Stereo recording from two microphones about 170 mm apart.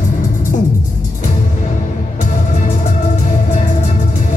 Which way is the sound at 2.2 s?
45° left (ahead or behind).